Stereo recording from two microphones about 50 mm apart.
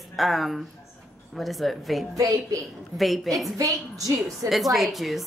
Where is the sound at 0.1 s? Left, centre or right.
Centre.